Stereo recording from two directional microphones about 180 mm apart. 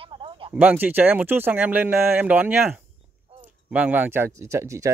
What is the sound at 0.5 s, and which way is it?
Speech, 10° right (ahead or behind).